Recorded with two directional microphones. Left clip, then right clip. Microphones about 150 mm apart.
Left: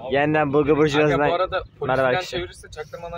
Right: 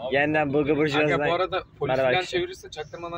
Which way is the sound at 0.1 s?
30° left (ahead or behind).